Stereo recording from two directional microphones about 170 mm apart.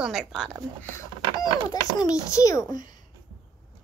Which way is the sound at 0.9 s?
20° left (ahead or behind).